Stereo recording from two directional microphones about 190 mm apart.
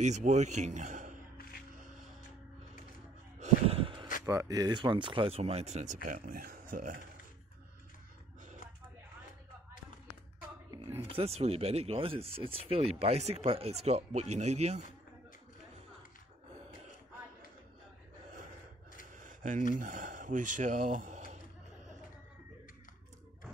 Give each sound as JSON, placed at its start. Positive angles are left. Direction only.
{"t": 0.0, "sound": "a man's voice", "side_deg": -40}
{"t": 3.3, "sound": "gasp", "side_deg": -35}
{"t": 4.3, "sound": "speech", "side_deg": -20}
{"t": 11.1, "sound": "speech", "side_deg": -30}
{"t": 19.1, "sound": "a sound", "side_deg": -40}
{"t": 19.7, "sound": "speech", "side_deg": -40}